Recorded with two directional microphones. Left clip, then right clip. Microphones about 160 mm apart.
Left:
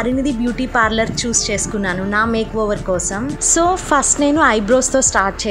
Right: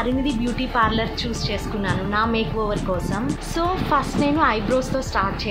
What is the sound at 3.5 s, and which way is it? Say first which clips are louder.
A woman's voice: left 6 dB; 45° left (ahead or behind).